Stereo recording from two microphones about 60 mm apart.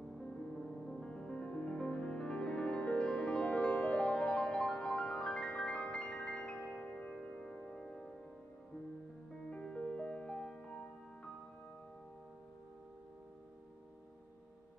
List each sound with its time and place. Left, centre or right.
0.2 s music: centre
7.2 s music: centre
9.5 s music: centre